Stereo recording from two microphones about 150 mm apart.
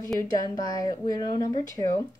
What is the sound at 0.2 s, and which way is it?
A woman's voice, 25° left (ahead or behind).